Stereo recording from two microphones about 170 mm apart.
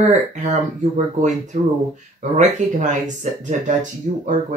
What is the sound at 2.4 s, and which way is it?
Speech, 45° right (ahead or behind).